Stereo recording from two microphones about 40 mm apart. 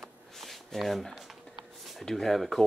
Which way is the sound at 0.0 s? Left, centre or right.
Centre.